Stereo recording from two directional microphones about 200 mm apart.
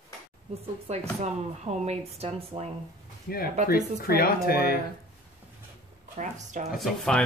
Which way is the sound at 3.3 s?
45° left (ahead or behind).